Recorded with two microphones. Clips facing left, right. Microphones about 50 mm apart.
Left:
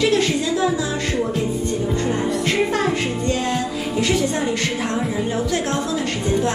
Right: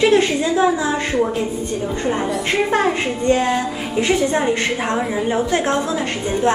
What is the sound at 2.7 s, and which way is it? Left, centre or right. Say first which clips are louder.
A man's voice: right 3 dB; right.